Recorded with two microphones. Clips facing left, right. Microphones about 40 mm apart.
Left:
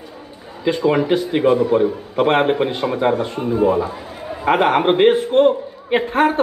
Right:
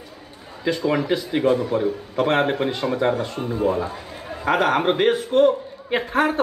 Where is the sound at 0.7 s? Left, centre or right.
Left.